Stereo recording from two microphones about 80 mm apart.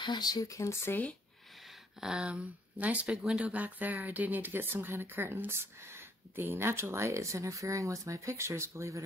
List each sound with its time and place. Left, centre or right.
0.0 s speech: left
2.0 s speech: centre
3.5 s speech: right